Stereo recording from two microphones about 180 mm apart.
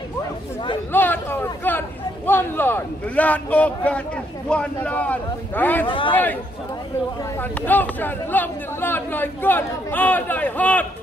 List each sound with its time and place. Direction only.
0.9 s a sound: 10° left (ahead or behind)
4.5 s speech: 5° left (ahead or behind)
5.9 s a man's voice: 30° left (ahead or behind)
7.6 s speech: 10° left (ahead or behind)